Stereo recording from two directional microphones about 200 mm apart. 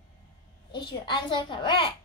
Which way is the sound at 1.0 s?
25° left (ahead or behind).